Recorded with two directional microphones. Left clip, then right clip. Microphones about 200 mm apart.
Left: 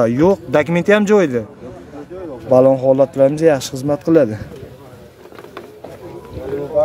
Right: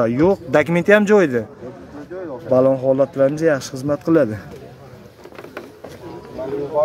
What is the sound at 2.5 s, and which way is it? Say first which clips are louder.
Speech: left 4 dB; 15° left (ahead or behind).